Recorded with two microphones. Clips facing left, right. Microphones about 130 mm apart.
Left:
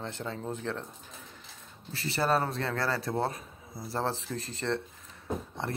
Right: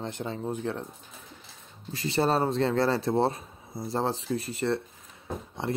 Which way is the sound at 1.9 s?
20° right (ahead or behind).